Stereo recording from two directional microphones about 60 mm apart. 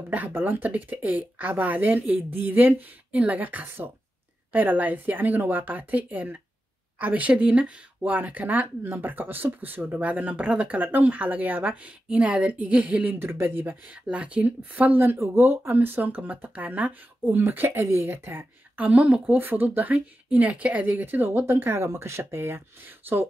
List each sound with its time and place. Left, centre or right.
0.3 s speech: right
13.1 s speech: right
14.0 s speech: right
17.5 s speech: right
21.0 s speech: right